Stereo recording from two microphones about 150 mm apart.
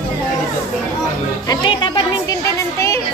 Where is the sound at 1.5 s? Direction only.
30° left (ahead or behind).